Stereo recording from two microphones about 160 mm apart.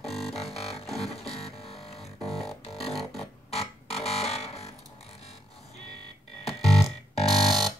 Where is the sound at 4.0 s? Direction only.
40° left (ahead or behind).